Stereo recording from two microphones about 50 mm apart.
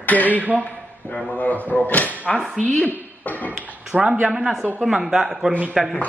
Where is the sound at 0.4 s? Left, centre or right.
Right.